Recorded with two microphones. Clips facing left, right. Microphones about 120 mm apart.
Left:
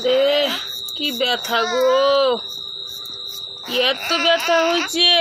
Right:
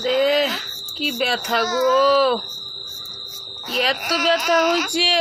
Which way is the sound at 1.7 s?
30° right (ahead or behind).